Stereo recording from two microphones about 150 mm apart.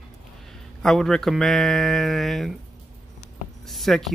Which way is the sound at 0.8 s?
Centre (ahead or behind).